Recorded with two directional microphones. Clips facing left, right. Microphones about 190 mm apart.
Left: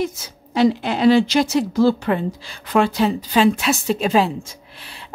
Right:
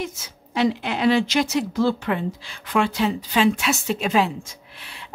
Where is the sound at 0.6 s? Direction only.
35° left (ahead or behind).